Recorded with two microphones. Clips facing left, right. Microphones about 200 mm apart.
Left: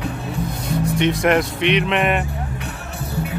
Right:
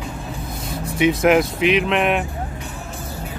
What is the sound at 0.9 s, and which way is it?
Speech, 5° right (ahead or behind).